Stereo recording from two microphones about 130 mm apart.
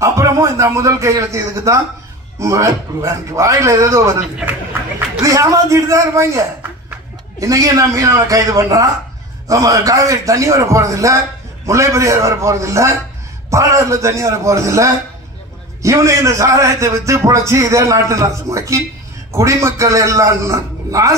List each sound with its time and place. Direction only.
0.0 s a man's voice: 25° right (ahead or behind)
4.4 s a man's voice: 10° right (ahead or behind)